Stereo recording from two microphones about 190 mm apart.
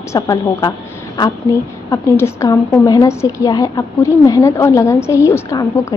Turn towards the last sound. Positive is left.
turn(degrees=15)  # may be behind; listen again after turning